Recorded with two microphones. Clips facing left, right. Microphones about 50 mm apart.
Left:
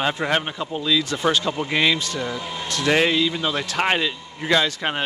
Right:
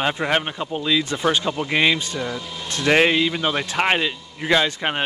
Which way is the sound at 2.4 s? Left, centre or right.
Left.